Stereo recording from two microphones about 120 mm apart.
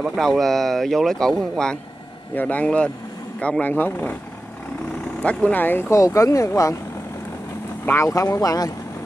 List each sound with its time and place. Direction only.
0.2 s speech: 5° left (ahead or behind)
5.2 s speech: 10° left (ahead or behind); by 6.8 s 25° left (ahead or behind)
7.8 s speech: 25° left (ahead or behind)